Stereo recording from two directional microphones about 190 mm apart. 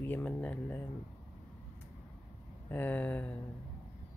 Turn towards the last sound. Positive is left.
turn(degrees=10)  # may be behind; listen again after turning